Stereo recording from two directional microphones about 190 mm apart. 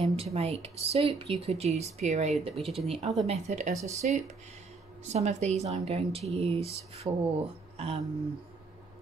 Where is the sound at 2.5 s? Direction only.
Centre (ahead or behind).